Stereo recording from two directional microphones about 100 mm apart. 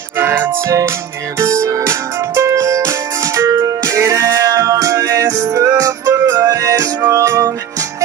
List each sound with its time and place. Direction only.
0.2 s music: 20° right (ahead or behind)
1.6 s music: 30° right (ahead or behind)